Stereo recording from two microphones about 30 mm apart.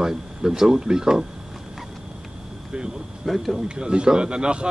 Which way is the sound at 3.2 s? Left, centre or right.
Centre.